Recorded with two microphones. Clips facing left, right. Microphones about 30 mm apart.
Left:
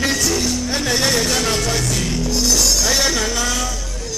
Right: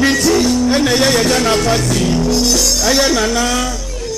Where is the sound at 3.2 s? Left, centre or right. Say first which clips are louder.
Right 5 dB; right.